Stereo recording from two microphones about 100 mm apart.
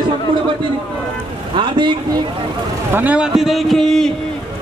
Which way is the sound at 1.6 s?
50° right (ahead or behind).